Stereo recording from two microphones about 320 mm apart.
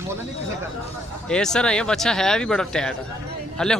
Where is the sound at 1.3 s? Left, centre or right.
Centre.